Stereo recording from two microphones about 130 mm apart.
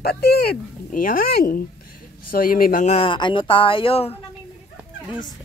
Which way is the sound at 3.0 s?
40° left (ahead or behind).